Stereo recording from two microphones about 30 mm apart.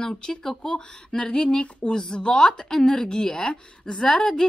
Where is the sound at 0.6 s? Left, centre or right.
Left.